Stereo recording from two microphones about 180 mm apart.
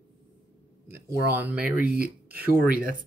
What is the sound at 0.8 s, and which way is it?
Speech, 10° right (ahead or behind).